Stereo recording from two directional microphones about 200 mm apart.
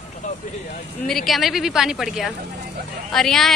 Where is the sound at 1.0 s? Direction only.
Centre (ahead or behind).